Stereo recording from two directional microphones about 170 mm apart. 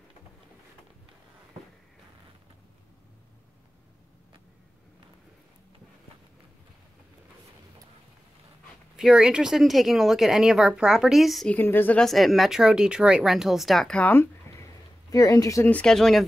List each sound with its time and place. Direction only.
8.9 s speech: 5° right (ahead or behind); by 15.7 s 20° left (ahead or behind)
15.7 s speech: 5° left (ahead or behind)